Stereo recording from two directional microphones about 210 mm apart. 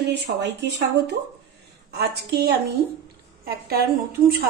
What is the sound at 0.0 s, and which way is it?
Speech, 55° right (ahead or behind).